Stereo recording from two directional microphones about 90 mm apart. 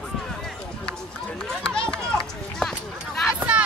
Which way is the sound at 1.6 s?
10° left (ahead or behind).